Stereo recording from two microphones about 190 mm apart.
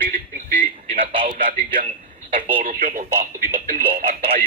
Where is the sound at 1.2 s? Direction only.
45° right (ahead or behind).